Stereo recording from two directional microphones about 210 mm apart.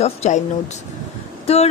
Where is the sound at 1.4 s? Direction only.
30° left (ahead or behind).